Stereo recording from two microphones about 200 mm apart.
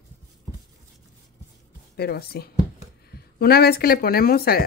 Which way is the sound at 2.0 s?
50° left (ahead or behind).